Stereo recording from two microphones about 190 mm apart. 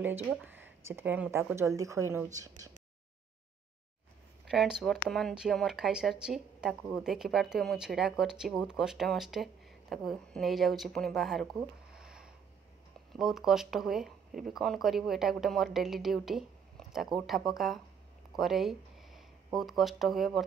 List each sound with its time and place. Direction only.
0.0 s speech: 10° right (ahead or behind)
4.5 s a woman's voice: 5° right (ahead or behind)